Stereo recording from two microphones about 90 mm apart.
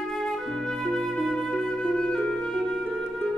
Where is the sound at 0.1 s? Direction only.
5° left (ahead or behind).